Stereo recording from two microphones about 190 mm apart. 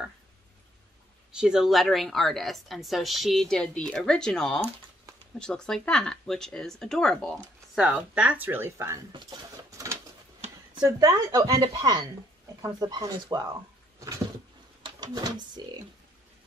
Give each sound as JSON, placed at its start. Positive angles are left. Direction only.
{"t": 1.3, "sound": "a woman's voice", "side_deg": -5}
{"t": 9.1, "sound": "a sound", "side_deg": -20}
{"t": 10.8, "sound": "speech", "side_deg": -20}